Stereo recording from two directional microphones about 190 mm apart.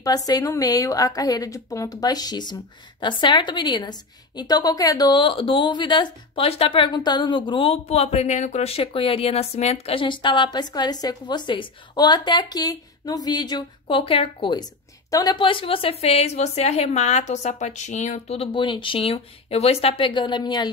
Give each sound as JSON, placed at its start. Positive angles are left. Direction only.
{"t": 0.0, "sound": "a woman's voice", "side_deg": 20}